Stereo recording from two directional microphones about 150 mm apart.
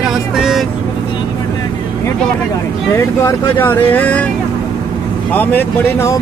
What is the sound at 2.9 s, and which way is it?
Speech, 15° left (ahead or behind).